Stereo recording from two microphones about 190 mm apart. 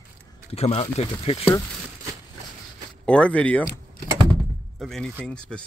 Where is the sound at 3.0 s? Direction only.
5° left (ahead or behind).